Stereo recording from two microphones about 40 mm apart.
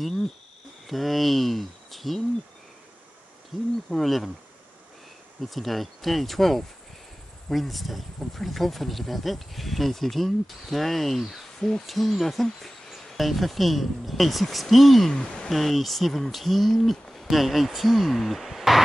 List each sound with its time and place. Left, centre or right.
0.8 s speech: centre
3.5 s speech: centre
5.4 s speech: centre
15.1 s speech: centre
15.5 s speech: centre